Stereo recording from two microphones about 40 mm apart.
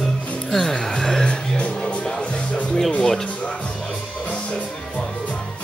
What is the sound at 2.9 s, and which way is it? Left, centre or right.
Speech, centre.